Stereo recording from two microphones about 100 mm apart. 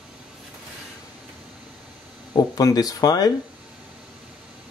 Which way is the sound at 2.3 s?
40° left (ahead or behind).